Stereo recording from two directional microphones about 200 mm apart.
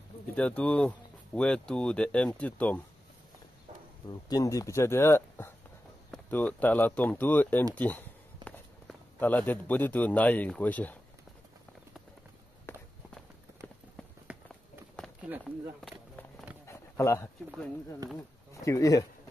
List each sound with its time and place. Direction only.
0.4 s speech: 5° left (ahead or behind)
4.1 s speech: 20° left (ahead or behind)
12.7 s walk: 10° left (ahead or behind)
14.3 s run: 5° right (ahead or behind)
15.2 s a sound: 5° right (ahead or behind)
16.6 s a sound: 15° left (ahead or behind)
17.5 s speech: 5° left (ahead or behind)
18.5 s speech: 15° left (ahead or behind)